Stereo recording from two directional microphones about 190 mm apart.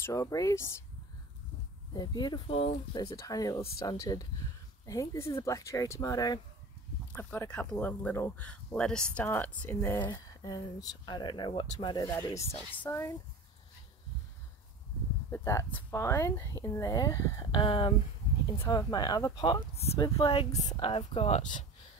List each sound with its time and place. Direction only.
0.0 s speech: 15° left (ahead or behind)
2.0 s speech: 20° left (ahead or behind)
3.2 s speech: 20° left (ahead or behind)
15.3 s speech: 15° left (ahead or behind); by 21.6 s 40° left (ahead or behind)